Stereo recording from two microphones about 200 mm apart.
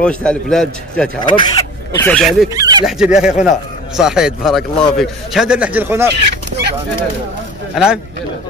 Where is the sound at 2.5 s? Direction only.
20° right (ahead or behind).